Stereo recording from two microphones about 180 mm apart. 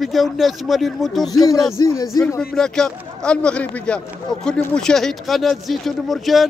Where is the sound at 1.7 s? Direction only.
20° left (ahead or behind).